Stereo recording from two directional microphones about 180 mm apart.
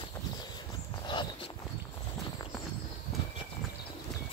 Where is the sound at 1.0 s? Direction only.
25° left (ahead or behind).